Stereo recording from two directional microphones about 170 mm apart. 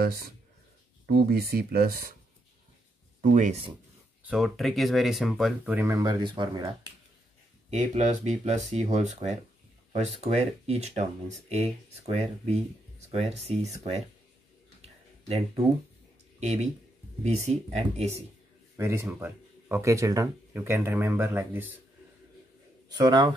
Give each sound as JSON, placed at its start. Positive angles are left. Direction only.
{"t": 0.0, "sound": "speech", "side_deg": -65}
{"t": 3.2, "sound": "speech", "side_deg": -45}
{"t": 4.2, "sound": "speech", "side_deg": -5}
{"t": 5.8, "sound": "speech", "side_deg": -20}
{"t": 7.9, "sound": "speech", "side_deg": -45}
{"t": 15.2, "sound": "speech", "side_deg": -35}
{"t": 18.8, "sound": "speech", "side_deg": -15}
{"t": 22.8, "sound": "speech", "side_deg": -25}